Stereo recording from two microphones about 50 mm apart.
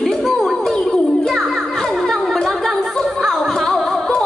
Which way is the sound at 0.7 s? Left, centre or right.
Centre.